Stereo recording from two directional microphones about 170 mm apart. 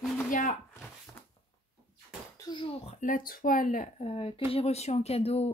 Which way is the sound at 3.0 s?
55° left (ahead or behind).